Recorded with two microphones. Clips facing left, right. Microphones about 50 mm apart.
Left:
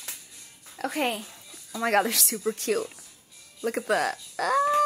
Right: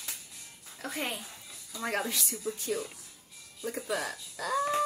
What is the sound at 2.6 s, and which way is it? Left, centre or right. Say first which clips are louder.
Speech: left 7 dB; left.